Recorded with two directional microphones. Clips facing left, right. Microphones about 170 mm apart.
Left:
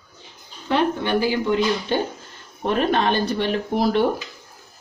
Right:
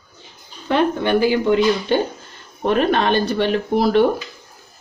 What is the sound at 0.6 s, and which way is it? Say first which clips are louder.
Speech: right 3 dB; 55° right (ahead or behind).